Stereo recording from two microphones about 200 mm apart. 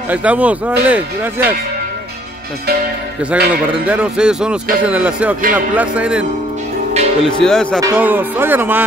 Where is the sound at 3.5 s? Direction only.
5° right (ahead or behind).